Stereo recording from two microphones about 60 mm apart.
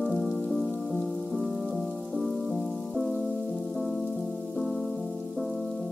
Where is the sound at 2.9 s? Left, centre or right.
Centre.